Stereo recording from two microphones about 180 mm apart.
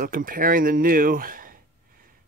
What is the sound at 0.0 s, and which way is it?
Speech, 55° right (ahead or behind).